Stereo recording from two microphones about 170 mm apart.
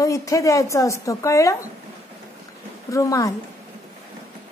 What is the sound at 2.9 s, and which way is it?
Speech, 20° left (ahead or behind).